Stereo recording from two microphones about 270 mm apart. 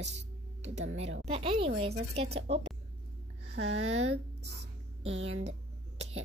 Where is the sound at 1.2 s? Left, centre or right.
Right.